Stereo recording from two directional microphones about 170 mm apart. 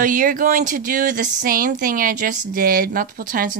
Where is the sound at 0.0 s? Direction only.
55° right (ahead or behind).